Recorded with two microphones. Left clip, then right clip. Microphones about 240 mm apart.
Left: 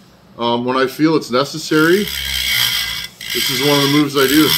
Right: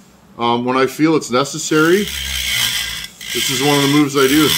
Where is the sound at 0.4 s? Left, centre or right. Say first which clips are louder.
Right 1 dB; right.